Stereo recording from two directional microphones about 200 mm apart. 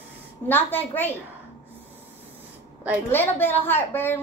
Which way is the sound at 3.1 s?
10° left (ahead or behind).